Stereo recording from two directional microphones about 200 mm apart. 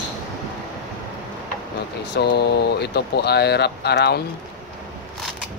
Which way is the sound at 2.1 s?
55° left (ahead or behind).